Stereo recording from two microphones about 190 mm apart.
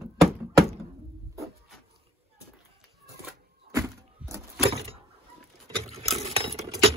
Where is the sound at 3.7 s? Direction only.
15° right (ahead or behind).